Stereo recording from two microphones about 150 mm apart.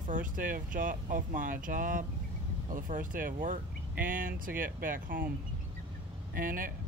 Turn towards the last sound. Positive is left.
turn(degrees=-70)  # may be behind; listen again after turning